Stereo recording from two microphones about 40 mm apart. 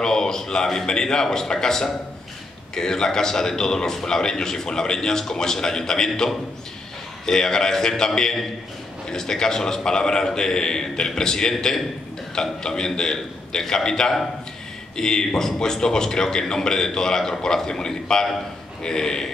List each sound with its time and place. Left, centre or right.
0.0 s a man's voice: centre